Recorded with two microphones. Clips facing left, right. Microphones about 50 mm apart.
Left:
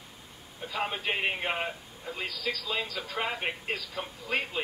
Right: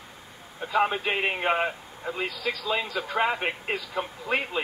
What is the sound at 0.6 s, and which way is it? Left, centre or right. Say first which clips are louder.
A man's voice: right 8 dB; right.